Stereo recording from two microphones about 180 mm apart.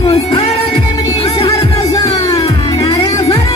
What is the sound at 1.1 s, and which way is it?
Music, 35° left (ahead or behind).